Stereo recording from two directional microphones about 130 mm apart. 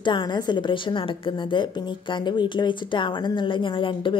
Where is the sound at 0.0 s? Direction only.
35° left (ahead or behind).